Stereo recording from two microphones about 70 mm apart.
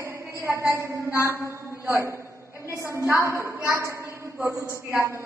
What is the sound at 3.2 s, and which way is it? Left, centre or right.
A woman's voice, right.